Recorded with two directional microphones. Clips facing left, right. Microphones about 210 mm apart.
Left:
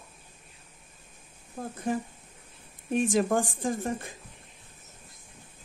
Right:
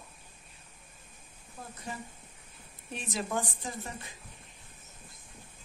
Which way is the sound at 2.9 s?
50° left (ahead or behind).